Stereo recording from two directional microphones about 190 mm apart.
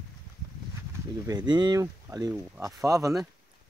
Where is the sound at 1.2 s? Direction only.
20° right (ahead or behind).